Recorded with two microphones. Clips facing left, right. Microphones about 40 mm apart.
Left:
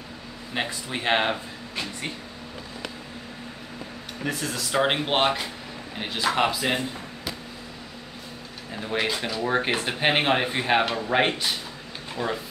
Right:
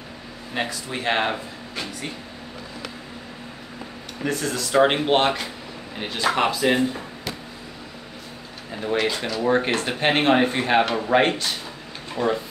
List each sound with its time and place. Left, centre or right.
0.7 s speech: centre
1.2 s speech: centre
4.2 s speech: centre
8.9 s speech: centre
12.2 s speech: centre